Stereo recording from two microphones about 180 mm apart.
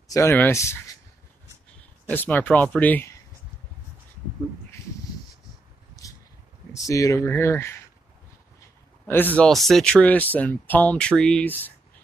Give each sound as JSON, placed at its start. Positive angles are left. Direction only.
{"t": 0.1, "sound": "speech", "side_deg": 15}
{"t": 2.0, "sound": "speech", "side_deg": 10}
{"t": 6.0, "sound": "a sound", "side_deg": 20}
{"t": 6.8, "sound": "speech", "side_deg": 20}
{"t": 9.0, "sound": "speech", "side_deg": 10}